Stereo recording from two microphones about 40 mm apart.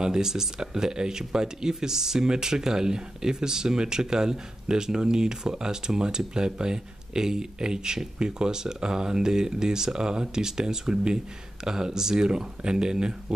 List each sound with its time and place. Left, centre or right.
0.0 s speech: centre